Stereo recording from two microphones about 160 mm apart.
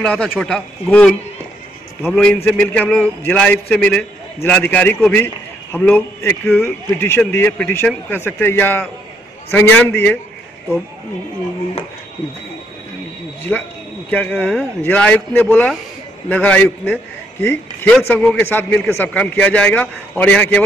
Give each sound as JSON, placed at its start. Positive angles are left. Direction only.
{"t": 0.0, "sound": "a man's voice", "side_deg": 5}
{"t": 14.1, "sound": "a man's voice", "side_deg": 10}